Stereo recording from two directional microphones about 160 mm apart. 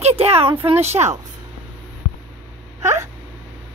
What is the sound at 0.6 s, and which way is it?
Speech, 40° right (ahead or behind).